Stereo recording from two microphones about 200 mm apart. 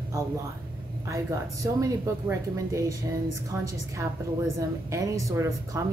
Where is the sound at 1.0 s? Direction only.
15° right (ahead or behind).